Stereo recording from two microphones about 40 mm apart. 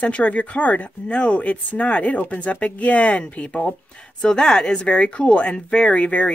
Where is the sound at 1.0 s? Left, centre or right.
Left.